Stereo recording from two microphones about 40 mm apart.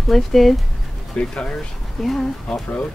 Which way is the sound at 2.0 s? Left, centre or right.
Centre.